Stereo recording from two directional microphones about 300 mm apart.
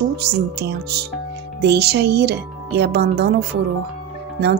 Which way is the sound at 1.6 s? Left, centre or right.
Right.